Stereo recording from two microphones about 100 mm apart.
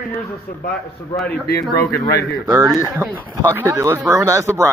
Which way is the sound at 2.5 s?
35° right (ahead or behind).